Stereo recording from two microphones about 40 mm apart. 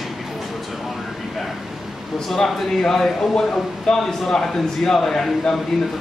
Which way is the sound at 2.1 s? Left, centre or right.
Centre.